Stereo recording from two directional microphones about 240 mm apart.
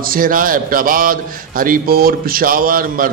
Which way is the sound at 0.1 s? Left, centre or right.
Right.